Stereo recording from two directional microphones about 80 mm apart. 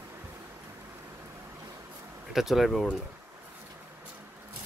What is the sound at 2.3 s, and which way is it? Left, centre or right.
Speech, centre.